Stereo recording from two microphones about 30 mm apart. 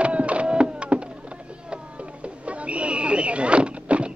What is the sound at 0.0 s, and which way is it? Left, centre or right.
Printer, right.